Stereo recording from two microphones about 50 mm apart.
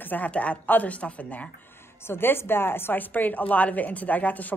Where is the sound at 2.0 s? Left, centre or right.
Left.